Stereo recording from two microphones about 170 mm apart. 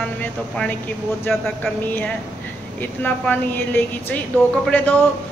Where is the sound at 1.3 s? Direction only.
Centre (ahead or behind).